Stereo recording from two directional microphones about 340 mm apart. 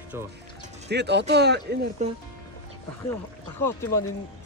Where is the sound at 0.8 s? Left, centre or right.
Right.